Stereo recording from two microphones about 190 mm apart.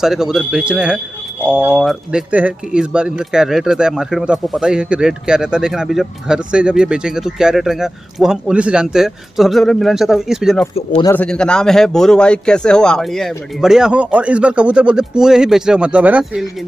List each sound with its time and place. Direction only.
0.0 s speech: centre (ahead or behind)
10.7 s speech: 30° left (ahead or behind)
11.1 s speech: 5° left (ahead or behind)